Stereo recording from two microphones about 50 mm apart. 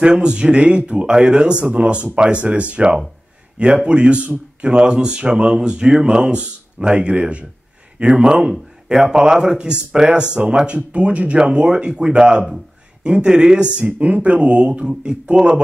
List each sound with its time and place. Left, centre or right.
0.0 s speech: centre
14.7 s speech: centre